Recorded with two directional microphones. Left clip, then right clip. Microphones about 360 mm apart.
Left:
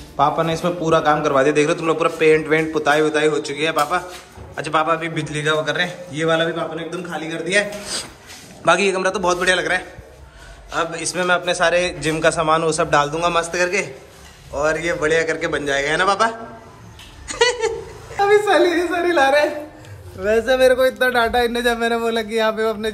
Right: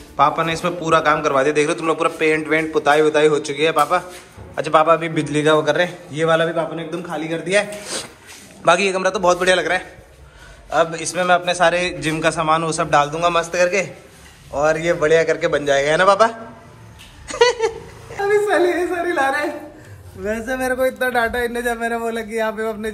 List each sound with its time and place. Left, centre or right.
0.2 s a man's voice: centre
8.6 s a man's voice: centre
17.3 s a sound: centre
20.2 s a man's voice: centre